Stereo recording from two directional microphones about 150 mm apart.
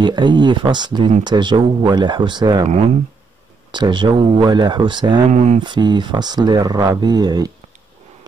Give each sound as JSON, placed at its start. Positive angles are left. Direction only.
{"t": 0.0, "sound": "speech", "side_deg": -30}
{"t": 3.7, "sound": "speech", "side_deg": -30}
{"t": 5.3, "sound": "speech", "side_deg": -50}
{"t": 5.6, "sound": "speech", "side_deg": -30}